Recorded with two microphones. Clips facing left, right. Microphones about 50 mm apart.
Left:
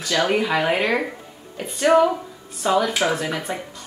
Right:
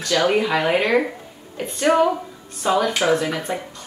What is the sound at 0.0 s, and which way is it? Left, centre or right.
Speech, centre.